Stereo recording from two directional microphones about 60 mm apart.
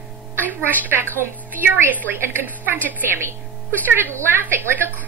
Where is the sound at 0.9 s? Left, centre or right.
Right.